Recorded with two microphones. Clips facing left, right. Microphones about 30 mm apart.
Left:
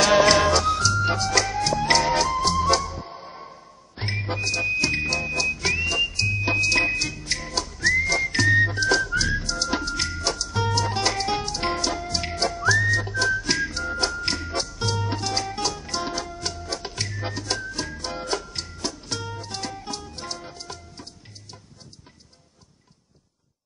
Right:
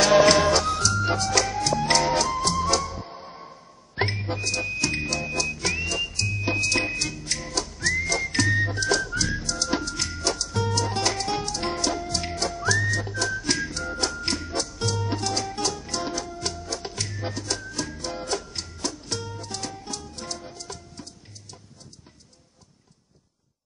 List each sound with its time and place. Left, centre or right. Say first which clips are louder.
0.0 s music: even; centre
5.4 s whistle: left 3 dB; centre
7.8 s whistling: left 5 dB; centre
9.4 s music: left 1 dB; centre
10.0 s music: left 1 dB; centre
10.6 s music: left 2 dB; centre
12.6 s whistling: left 4 dB; centre
15.0 s music: left 1 dB; centre
16.6 s music: left 1 dB; centre